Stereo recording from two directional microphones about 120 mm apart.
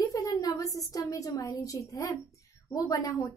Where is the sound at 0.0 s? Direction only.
30° left (ahead or behind).